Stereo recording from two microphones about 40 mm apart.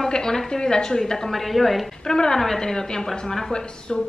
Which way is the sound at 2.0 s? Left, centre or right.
Centre.